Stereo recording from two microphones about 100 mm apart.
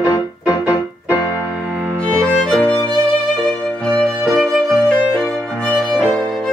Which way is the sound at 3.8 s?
10° left (ahead or behind).